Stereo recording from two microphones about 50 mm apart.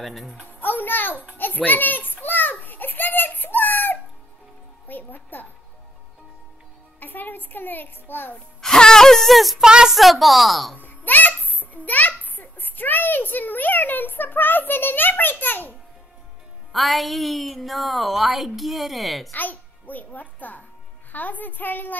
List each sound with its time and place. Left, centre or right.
0.0 s a woman's voice: centre
0.5 s music: left
1.4 s a child's voice: left
2.2 s a sound: left
4.8 s a child's voice: left
7.0 s a child's voice: left
8.5 s speech: centre
9.7 s a woman's voice: centre
9.9 s a woman's voice: centre
10.8 s a child's voice: left
16.7 s a woman's voice: centre
19.3 s a child's voice: left